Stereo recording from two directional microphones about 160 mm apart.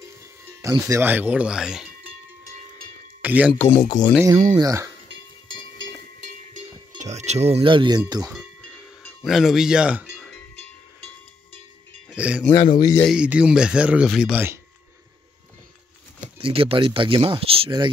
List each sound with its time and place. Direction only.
0.6 s speech: 20° right (ahead or behind); by 1.9 s 5° right (ahead or behind)
3.2 s speech: 10° right (ahead or behind)
3.7 s speech: 25° left (ahead or behind)
4.6 s speech: 20° right (ahead or behind)
7.0 s speech: 45° right (ahead or behind); by 8.3 s 25° right (ahead or behind)
9.2 s speech: centre (ahead or behind)
10.1 s music: centre (ahead or behind)
12.1 s cowbell: 5° right (ahead or behind)
12.4 s speech: 25° left (ahead or behind)
13.0 s speech: 5° right (ahead or behind)
16.3 s speech: 35° right (ahead or behind)